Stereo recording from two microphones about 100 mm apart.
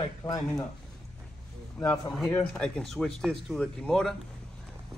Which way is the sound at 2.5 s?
10° left (ahead or behind).